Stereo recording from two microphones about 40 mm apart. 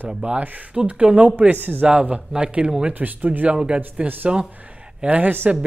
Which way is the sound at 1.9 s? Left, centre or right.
Right.